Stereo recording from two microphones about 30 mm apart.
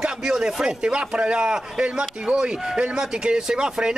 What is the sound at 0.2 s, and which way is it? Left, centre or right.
A man's voice, right.